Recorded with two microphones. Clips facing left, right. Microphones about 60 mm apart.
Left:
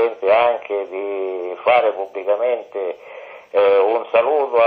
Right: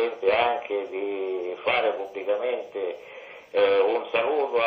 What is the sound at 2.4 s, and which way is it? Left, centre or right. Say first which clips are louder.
A man's voice: left 7 dB; left.